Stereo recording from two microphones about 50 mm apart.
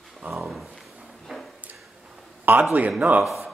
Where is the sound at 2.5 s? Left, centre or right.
Right.